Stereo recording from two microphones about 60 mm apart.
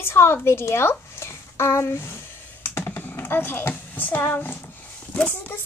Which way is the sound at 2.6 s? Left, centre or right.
Left.